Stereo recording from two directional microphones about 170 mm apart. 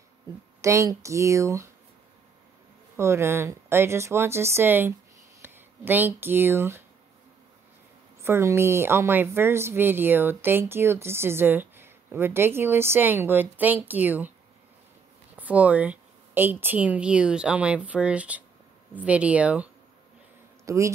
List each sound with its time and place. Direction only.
0.6 s a woman's voice: 20° right (ahead or behind)
3.0 s a woman's voice: 15° right (ahead or behind)
8.2 s a woman's voice: 15° right (ahead or behind)
15.3 s a woman's voice: 10° right (ahead or behind)
20.6 s a man's voice: 20° right (ahead or behind)